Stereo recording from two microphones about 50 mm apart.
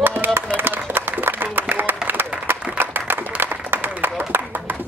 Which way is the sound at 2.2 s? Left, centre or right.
Right.